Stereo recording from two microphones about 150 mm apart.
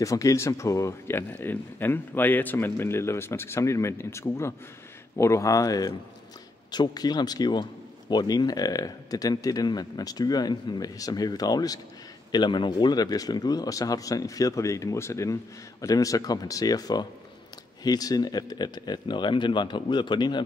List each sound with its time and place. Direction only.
0.0 s speech: 20° left (ahead or behind)